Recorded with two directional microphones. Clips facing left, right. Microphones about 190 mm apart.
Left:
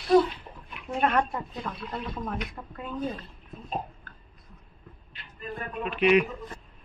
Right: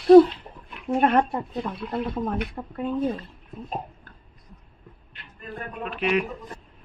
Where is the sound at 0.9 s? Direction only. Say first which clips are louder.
Right 5 dB; 35° right (ahead or behind).